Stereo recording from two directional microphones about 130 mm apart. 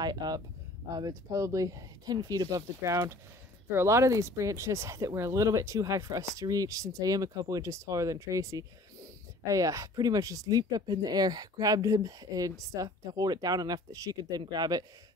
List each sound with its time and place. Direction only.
0.0 s speech: 30° right (ahead or behind)